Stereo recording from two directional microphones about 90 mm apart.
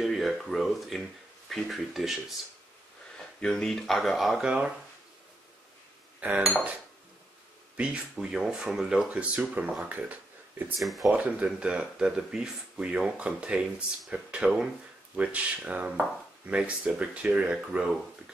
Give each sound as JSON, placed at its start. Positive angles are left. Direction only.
{"t": 0.0, "sound": "speech", "side_deg": 0}
{"t": 3.3, "sound": "speech", "side_deg": 10}
{"t": 6.2, "sound": "speech", "side_deg": -15}
{"t": 7.7, "sound": "speech", "side_deg": -10}
{"t": 10.8, "sound": "speech", "side_deg": 0}
{"t": 11.1, "sound": "speech", "side_deg": -15}